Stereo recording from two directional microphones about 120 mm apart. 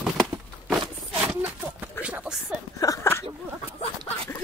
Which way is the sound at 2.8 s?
25° left (ahead or behind).